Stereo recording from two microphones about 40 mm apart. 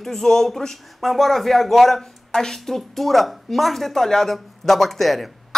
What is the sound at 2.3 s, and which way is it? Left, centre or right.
Speech, centre.